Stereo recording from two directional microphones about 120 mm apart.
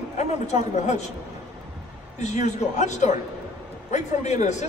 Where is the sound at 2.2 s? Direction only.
75° left (ahead or behind).